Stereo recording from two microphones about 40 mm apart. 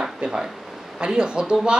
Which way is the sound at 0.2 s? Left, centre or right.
Centre.